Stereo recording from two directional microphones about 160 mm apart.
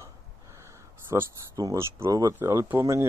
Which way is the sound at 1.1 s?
20° right (ahead or behind).